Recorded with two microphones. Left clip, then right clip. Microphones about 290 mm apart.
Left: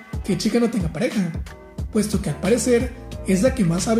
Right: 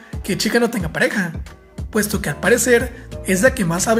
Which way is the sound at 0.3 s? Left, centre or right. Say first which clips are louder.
Right 4 dB; right.